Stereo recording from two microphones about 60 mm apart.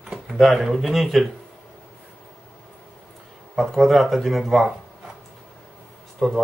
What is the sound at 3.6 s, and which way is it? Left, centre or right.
Speech, centre.